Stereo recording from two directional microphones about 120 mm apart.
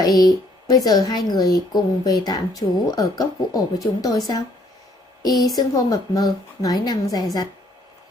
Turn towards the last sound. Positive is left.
turn(degrees=30)  # may be behind; listen again after turning